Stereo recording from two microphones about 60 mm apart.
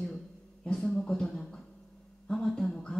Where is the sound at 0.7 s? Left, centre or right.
Centre.